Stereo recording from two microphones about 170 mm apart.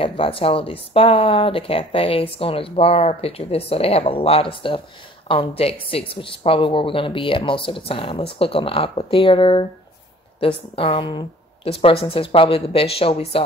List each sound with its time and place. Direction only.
0.0 s speech: 30° left (ahead or behind)